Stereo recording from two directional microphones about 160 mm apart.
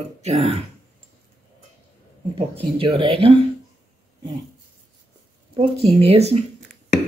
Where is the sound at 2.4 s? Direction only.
35° right (ahead or behind).